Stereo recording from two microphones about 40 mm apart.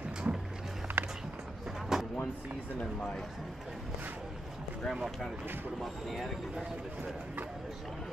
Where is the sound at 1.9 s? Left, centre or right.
Centre.